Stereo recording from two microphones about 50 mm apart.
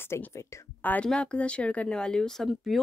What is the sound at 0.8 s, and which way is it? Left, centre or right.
Speech, left.